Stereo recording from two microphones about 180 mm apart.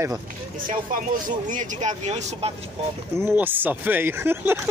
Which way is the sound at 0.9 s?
50° right (ahead or behind).